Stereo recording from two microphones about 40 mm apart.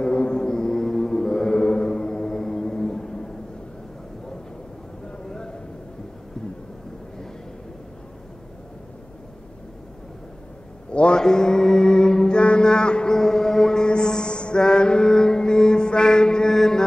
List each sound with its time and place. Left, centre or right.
0.0 s mantra: left
5.2 s a sound: centre
10.9 s mantra: left